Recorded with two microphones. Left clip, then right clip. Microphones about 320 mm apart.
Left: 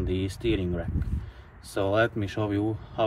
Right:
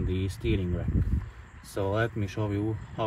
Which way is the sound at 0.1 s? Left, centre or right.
Left.